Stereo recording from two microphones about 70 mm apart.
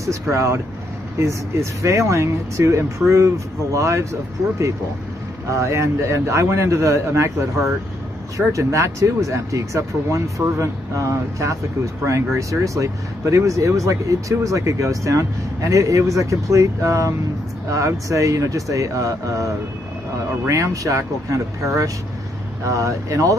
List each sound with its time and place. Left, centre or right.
0.0 s speech: right